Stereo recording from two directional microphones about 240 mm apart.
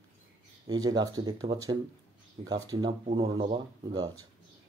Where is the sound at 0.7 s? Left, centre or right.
Centre.